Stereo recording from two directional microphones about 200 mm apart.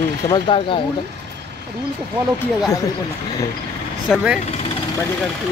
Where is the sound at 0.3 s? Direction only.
25° left (ahead or behind).